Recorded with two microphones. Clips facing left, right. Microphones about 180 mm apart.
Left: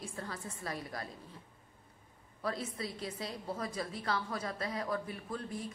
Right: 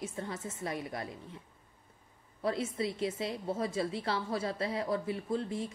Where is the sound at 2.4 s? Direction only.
25° right (ahead or behind).